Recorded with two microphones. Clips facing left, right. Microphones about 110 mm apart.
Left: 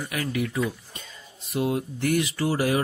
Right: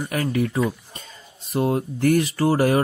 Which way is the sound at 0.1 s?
40° right (ahead or behind).